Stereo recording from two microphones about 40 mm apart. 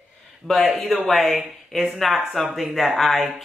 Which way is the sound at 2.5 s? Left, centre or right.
Centre.